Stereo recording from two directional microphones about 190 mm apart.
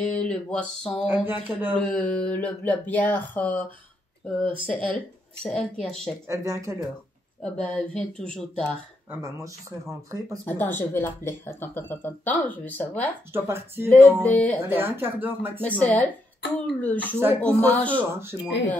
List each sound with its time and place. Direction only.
0.0 s speech: 5° left (ahead or behind)
1.0 s speech: 10° right (ahead or behind)
1.7 s speech: 5° left (ahead or behind)
6.2 s speech: 15° right (ahead or behind)
7.4 s speech: 5° left (ahead or behind)
9.1 s speech: 15° right (ahead or behind)
10.4 s speech: 10° left (ahead or behind)
13.3 s speech: 10° right (ahead or behind)
14.2 s speech: 5° left (ahead or behind)
14.6 s speech: 10° right (ahead or behind)
15.6 s speech: 10° left (ahead or behind)
18.1 s speech: 15° right (ahead or behind)